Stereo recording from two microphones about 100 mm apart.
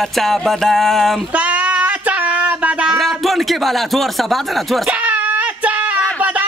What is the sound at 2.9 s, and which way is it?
Speech, centre (ahead or behind).